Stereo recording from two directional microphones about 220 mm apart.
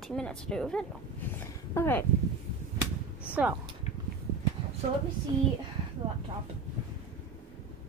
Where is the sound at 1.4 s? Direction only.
10° left (ahead or behind).